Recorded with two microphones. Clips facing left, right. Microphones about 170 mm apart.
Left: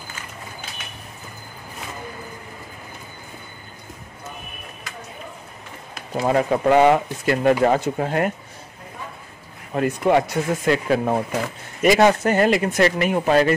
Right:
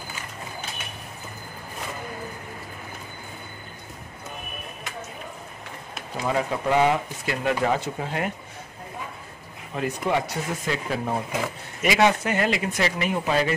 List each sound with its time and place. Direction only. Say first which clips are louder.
6.2 s speech: left 7 dB; 55° left (ahead or behind)
9.8 s speech: left 7 dB; 55° left (ahead or behind)
11.8 s speech: left 5 dB; 45° left (ahead or behind)